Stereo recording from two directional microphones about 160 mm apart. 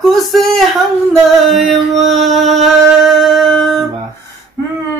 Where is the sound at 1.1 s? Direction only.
Centre (ahead or behind).